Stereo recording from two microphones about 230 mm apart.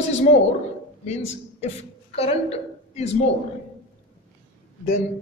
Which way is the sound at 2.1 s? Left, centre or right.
Left.